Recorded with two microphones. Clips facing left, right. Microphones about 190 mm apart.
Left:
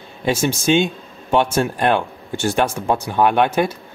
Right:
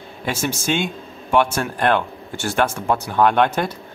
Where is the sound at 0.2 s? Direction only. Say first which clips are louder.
Left 5 dB; 15° left (ahead or behind).